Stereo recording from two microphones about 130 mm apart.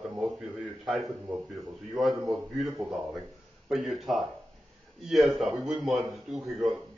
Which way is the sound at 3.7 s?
Centre (ahead or behind).